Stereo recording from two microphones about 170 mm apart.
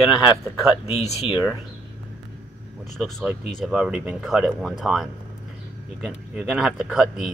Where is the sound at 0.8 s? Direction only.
35° left (ahead or behind).